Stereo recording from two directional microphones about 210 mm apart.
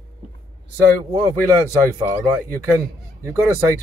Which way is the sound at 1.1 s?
20° right (ahead or behind).